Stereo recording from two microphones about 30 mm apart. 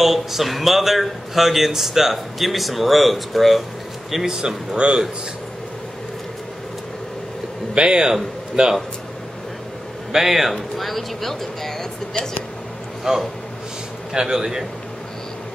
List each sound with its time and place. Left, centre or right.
0.0 s speech: centre
4.3 s speech: right
7.7 s speech: right
10.1 s speech: centre
10.5 s speech: centre
13.0 s speech: centre
14.1 s speech: centre